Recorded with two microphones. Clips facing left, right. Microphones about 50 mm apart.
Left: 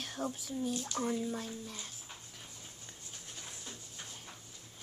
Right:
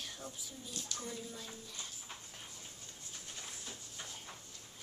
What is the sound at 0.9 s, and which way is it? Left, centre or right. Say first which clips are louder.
Speech: left 10 dB; left.